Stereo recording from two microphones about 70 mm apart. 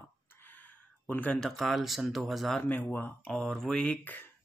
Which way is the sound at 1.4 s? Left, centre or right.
Centre.